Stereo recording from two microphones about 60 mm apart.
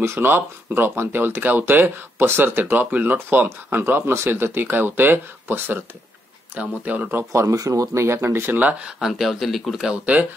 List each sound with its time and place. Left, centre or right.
0.0 s speech: right
6.5 s speech: right
7.3 s speech: right
8.5 s speech: right
9.0 s speech: centre